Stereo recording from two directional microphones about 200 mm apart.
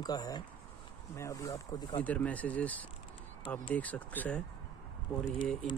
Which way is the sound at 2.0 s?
5° left (ahead or behind).